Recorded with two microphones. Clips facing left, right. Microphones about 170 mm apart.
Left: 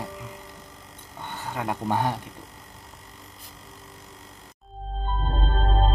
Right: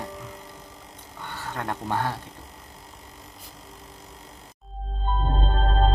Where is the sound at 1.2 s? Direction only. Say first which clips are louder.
Left 1 dB; 20° left (ahead or behind).